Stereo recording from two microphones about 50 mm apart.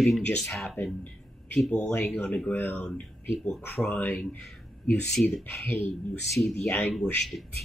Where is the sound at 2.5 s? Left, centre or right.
Left.